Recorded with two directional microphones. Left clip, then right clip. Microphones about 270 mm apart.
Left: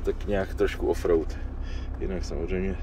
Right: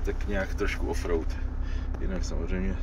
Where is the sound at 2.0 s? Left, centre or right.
Centre.